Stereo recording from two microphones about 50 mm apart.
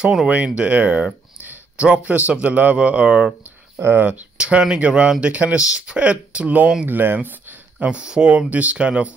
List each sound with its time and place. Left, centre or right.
0.3 s speech: right
1.4 s a sound: right
2.4 s speech: right
3.7 s speech: right
4.0 s speech: right
6.9 s speech: right
7.9 s speech: centre